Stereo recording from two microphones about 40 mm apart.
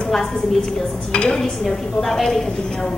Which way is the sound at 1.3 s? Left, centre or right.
Centre.